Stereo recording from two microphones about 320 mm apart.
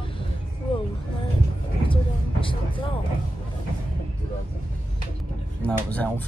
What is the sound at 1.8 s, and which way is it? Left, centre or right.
Speech, centre.